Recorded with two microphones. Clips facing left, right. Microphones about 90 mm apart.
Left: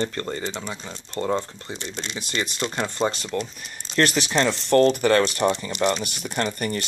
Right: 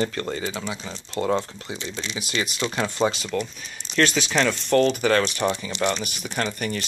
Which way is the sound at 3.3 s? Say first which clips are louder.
Right 1 dB; 25° left (ahead or behind).